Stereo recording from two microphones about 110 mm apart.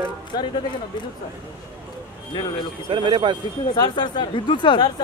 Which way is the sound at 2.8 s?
45° right (ahead or behind).